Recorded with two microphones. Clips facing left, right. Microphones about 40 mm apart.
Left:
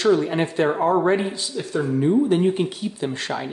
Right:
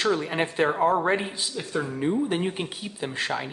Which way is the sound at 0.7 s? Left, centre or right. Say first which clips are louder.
Left 2 dB; centre.